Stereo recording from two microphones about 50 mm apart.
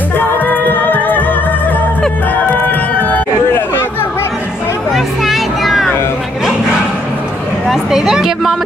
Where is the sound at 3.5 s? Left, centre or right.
Left.